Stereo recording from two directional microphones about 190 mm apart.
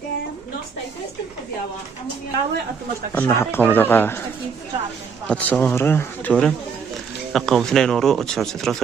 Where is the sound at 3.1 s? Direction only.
10° left (ahead or behind).